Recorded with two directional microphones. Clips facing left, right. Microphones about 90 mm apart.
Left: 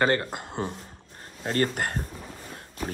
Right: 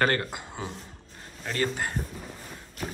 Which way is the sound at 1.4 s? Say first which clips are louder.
Left 3 dB; 45° left (ahead or behind).